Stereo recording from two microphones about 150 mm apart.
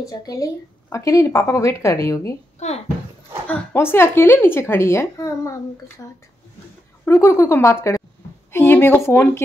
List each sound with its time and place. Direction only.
0.0 s a woman's voice: 25° left (ahead or behind)
2.6 s a child's voice: 50° left (ahead or behind)
3.4 s a woman's voice: 15° left (ahead or behind)